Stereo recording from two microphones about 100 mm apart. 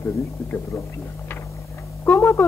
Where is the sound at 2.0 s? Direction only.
20° left (ahead or behind).